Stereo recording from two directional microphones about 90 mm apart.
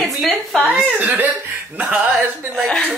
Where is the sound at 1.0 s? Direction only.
20° right (ahead or behind).